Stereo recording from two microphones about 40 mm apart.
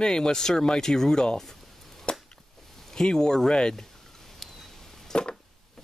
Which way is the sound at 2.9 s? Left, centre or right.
Centre.